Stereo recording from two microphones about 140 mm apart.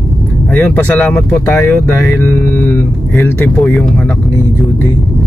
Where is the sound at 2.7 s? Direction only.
15° left (ahead or behind).